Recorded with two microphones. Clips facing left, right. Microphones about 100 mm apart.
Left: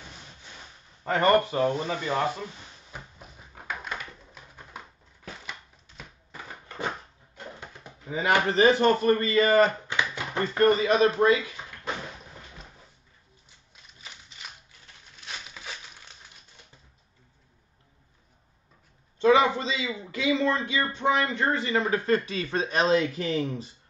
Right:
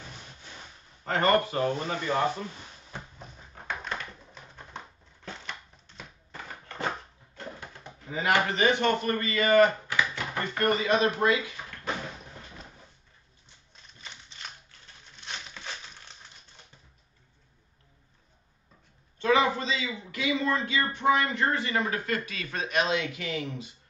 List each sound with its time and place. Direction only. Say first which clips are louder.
1.1 s a man's voice: left 3 dB; 20° left (ahead or behind)
2.9 s a sound: right 2 dB; 10° left (ahead or behind)
7.3 s a sound: right 1 dB; 20° left (ahead or behind)
8.5 s a man's voice: left 5 dB; 35° left (ahead or behind)
15.3 s crumpling: even; 5° left (ahead or behind)
19.1 s a man's voice: left 4 dB; 25° left (ahead or behind)